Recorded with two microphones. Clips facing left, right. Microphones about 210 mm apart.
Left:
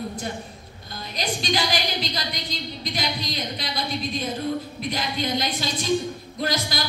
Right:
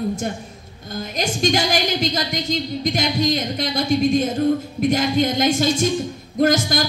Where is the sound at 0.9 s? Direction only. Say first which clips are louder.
Right 5 dB; 45° right (ahead or behind).